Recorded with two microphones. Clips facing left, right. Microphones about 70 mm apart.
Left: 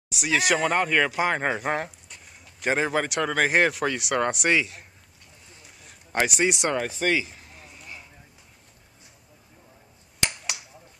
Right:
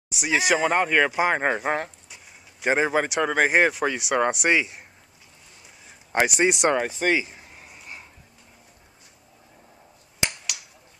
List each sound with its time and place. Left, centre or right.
0.1 s speech: centre
4.5 s speech: centre
6.3 s speech: right
6.9 s a sound: centre